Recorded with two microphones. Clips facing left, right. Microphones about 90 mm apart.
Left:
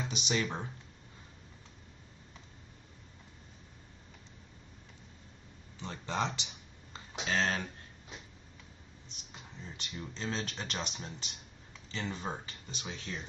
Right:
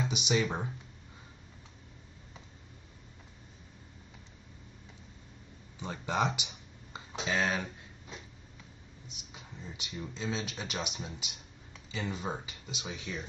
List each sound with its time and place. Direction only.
0.1 s speech: 15° right (ahead or behind)
5.8 s a sound: 15° right (ahead or behind)
7.2 s speech: 15° right (ahead or behind)
9.0 s speech: 10° right (ahead or behind)